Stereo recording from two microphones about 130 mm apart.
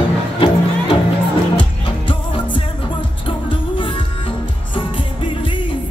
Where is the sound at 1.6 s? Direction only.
40° left (ahead or behind).